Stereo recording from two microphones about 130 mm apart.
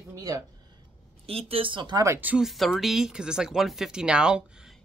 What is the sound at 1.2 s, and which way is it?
Speech, 50° right (ahead or behind).